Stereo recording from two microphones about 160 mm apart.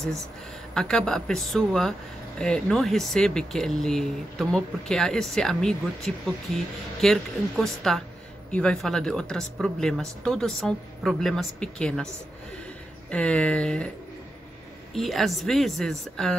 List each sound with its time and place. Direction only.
0.7 s speech: 5° left (ahead or behind)
13.1 s speech: 5° left (ahead or behind)
15.0 s speech: centre (ahead or behind)